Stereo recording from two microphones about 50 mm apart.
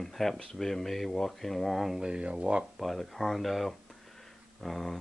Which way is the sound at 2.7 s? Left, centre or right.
Centre.